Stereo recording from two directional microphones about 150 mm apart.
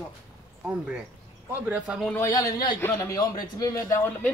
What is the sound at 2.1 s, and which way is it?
A man's voice, 20° left (ahead or behind).